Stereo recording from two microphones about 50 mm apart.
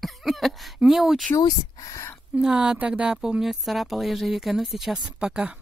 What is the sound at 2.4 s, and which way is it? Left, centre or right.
Speech, centre.